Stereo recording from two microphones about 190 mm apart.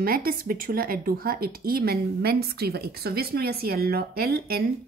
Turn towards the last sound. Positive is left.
turn(degrees=-55)  # may be behind; listen again after turning